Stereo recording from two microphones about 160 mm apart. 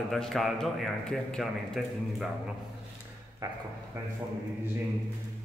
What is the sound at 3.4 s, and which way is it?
Speech, 25° right (ahead or behind).